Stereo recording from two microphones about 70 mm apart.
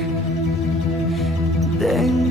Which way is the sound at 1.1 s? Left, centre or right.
Centre.